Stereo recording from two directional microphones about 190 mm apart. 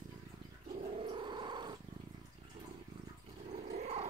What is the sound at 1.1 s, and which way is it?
Cat, 25° right (ahead or behind).